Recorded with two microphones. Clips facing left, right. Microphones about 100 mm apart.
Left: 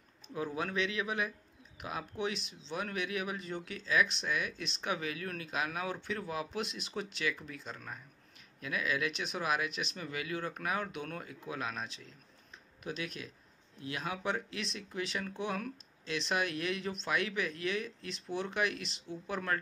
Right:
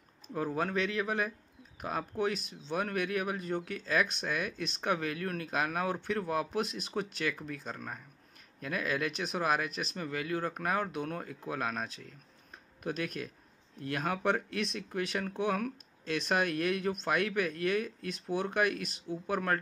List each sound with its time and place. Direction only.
0.3 s speech: 40° right (ahead or behind)